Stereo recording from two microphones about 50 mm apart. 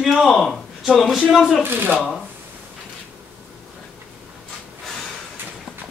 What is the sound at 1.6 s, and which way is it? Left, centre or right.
Speech, right.